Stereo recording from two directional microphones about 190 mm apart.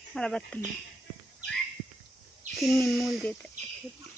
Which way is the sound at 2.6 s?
Centre (ahead or behind).